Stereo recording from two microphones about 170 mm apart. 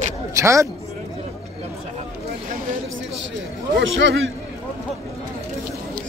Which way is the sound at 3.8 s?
90° right.